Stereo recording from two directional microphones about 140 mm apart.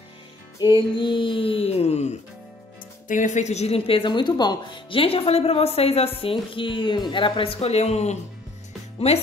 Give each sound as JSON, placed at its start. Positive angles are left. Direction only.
{"t": 0.6, "sound": "speech", "side_deg": 35}
{"t": 3.1, "sound": "a woman's voice", "side_deg": 65}